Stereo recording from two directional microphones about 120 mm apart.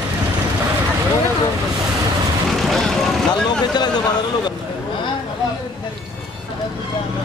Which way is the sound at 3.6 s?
35° left (ahead or behind).